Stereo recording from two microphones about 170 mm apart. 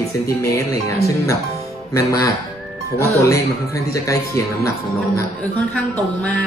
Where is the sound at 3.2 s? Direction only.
20° left (ahead or behind).